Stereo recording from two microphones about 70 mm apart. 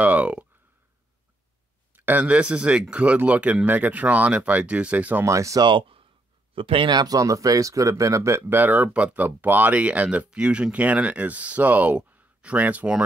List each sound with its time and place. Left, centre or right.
0.0 s a sound: right
2.0 s speech: right
5.2 s speech: right
6.9 s speech: right; by 13.0 s centre